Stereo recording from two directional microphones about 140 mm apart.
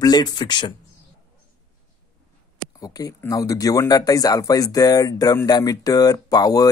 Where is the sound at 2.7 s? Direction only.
25° left (ahead or behind).